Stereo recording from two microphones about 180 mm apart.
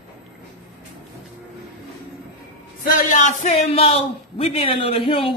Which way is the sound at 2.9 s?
40° left (ahead or behind).